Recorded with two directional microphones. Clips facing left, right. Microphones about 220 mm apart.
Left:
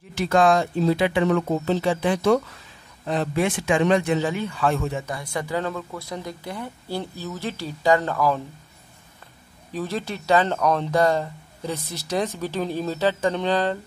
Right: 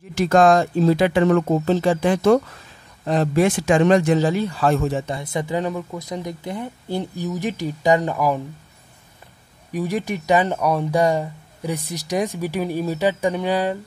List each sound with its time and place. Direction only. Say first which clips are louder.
0.1 s speech: right 4 dB; 45° right (ahead or behind)
5.0 s speech: right 4 dB; 25° right (ahead or behind)
9.7 s speech: right 4 dB; 15° right (ahead or behind)